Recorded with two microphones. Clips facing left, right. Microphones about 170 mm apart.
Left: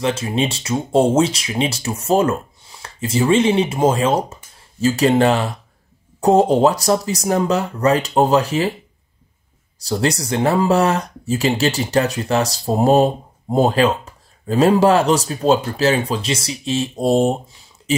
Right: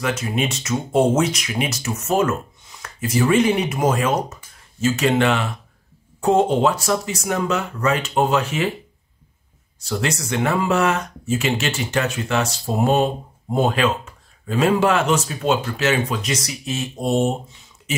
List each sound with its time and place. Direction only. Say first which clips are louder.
0.0 s speech: left 3 dB; 30° left (ahead or behind)
9.8 s speech: left 4 dB; 35° left (ahead or behind)